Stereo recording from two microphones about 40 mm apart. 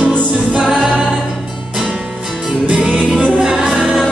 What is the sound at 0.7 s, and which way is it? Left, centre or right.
A capella, centre.